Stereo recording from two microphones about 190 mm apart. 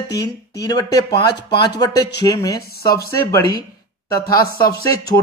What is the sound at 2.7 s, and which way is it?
Speech, 55° left (ahead or behind).